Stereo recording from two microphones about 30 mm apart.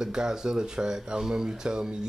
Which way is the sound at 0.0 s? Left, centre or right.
Right.